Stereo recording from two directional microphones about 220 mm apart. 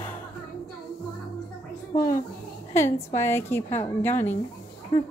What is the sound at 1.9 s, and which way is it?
A child's voice, 15° left (ahead or behind).